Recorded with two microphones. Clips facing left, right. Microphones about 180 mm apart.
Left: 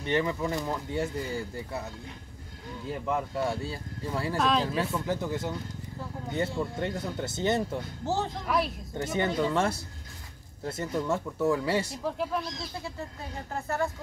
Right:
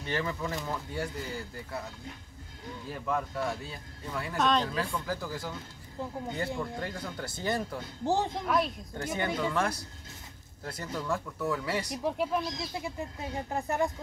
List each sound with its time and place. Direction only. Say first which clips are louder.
0.0 s speech: left 5 dB; 20° left (ahead or behind)
2.9 s speech: left 2 dB; 20° left (ahead or behind)
4.4 s speech: even; 5° left (ahead or behind)
5.0 s speech: left 5 dB; 20° left (ahead or behind)
6.6 s speech: left 4 dB; 20° left (ahead or behind)
8.0 s speech: right 2 dB; 15° right (ahead or behind)
8.5 s speech: left 1 dB; centre (ahead or behind)
8.9 s speech: left 4 dB; 20° left (ahead or behind)
12.0 s speech: right 1 dB; 15° right (ahead or behind)